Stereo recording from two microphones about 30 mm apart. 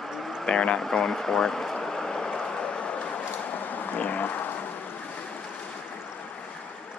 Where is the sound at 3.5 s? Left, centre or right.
Left.